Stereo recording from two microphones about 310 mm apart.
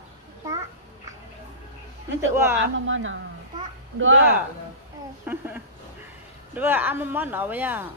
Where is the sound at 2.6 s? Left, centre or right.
Right.